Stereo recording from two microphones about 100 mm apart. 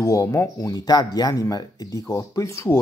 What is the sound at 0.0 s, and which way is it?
Speech, 35° left (ahead or behind).